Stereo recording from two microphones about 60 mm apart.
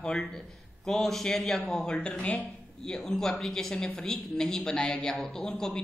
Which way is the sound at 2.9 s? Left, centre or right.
Centre.